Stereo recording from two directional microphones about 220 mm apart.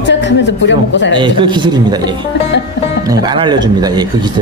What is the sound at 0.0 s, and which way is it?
Speech, 55° left (ahead or behind).